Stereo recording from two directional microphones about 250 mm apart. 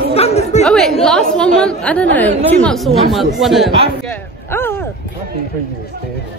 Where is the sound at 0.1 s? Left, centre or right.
Left.